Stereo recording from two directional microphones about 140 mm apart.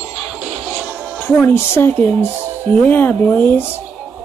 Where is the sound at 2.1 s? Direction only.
10° right (ahead or behind).